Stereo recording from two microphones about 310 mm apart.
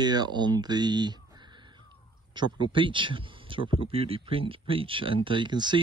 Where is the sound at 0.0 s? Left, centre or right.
Centre.